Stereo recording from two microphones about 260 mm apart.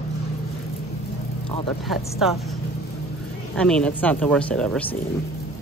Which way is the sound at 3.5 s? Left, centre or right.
Centre.